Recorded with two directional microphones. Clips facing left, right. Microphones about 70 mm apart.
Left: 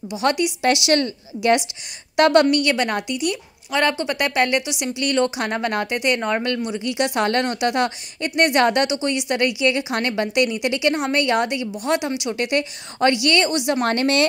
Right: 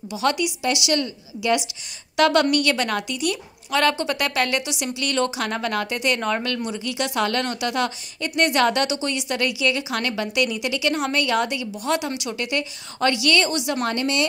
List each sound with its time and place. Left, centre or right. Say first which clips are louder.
0.2 s a woman's voice: left 2 dB; left
0.6 s a woman's voice: left 4 dB; left
2.1 s a woman's voice: left 3 dB; left
13.8 s a woman's voice: left 5 dB; left